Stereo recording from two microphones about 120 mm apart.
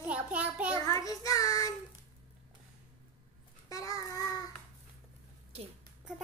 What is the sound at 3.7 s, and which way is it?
Babbling, 30° left (ahead or behind).